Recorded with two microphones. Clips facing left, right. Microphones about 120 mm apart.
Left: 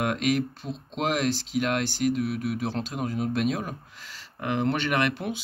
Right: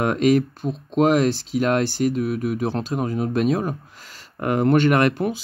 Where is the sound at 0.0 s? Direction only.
40° right (ahead or behind).